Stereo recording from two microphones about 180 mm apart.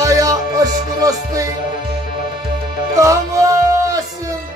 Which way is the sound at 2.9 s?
20° right (ahead or behind).